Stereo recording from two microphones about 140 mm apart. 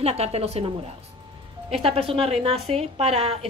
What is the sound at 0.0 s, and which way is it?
Speech, 50° right (ahead or behind).